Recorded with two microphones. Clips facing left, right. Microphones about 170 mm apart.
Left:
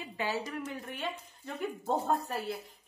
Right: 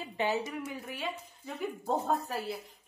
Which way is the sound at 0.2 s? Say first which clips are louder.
Right 3 dB; 20° right (ahead or behind).